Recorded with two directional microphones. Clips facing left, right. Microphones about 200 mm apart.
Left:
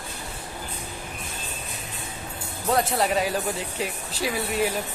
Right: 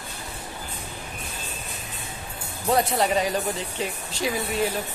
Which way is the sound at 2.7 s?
Centre (ahead or behind).